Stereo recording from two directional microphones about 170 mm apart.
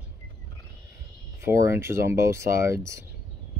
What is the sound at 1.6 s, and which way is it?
Speech, 15° right (ahead or behind).